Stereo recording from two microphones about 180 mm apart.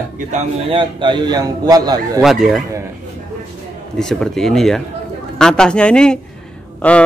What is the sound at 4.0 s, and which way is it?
A man's voice, 5° left (ahead or behind).